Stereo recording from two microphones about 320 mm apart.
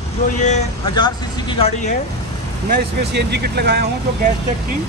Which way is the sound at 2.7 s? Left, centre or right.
Right.